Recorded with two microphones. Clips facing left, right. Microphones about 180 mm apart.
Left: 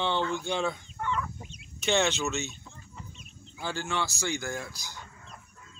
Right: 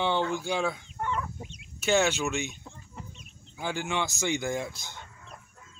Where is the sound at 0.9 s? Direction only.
40° right (ahead or behind).